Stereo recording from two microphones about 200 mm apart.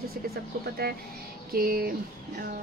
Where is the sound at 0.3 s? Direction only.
50° right (ahead or behind).